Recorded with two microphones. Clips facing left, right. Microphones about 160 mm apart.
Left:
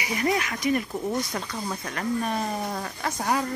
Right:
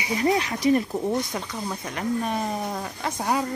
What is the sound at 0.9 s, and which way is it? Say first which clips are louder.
Speech: right 3 dB; 20° right (ahead or behind).